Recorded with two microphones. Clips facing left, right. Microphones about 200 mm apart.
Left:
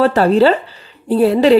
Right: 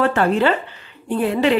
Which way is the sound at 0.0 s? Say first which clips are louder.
Left 6 dB; 35° left (ahead or behind).